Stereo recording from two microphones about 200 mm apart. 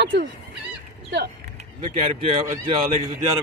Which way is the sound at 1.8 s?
25° right (ahead or behind).